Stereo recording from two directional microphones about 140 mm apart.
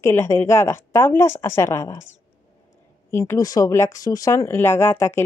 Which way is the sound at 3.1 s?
20° left (ahead or behind).